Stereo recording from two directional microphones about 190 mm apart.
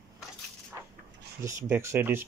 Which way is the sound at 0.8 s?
15° right (ahead or behind).